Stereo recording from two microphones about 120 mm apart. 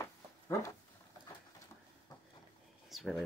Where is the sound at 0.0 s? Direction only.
25° left (ahead or behind).